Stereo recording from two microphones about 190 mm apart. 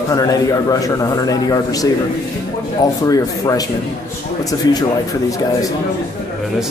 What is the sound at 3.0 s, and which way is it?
A man's voice, 20° left (ahead or behind).